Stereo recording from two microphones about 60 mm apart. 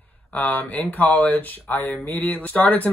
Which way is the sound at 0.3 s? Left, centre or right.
Left.